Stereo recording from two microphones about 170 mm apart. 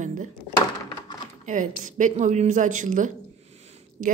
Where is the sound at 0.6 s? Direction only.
25° left (ahead or behind).